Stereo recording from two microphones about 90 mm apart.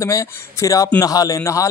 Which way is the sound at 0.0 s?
35° left (ahead or behind).